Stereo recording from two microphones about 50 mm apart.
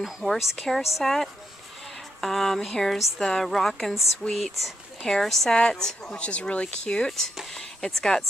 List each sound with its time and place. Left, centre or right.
0.0 s speech: centre
4.2 s speech: left
5.0 s speech: centre
5.5 s speech: centre